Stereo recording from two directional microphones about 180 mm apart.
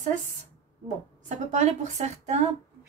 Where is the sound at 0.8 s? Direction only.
40° right (ahead or behind).